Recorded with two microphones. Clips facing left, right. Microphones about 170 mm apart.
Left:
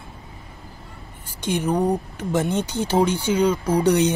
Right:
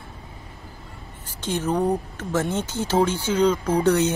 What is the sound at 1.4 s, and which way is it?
Speech, 15° left (ahead or behind).